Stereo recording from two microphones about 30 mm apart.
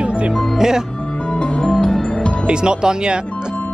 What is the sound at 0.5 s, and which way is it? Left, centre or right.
Speech, centre.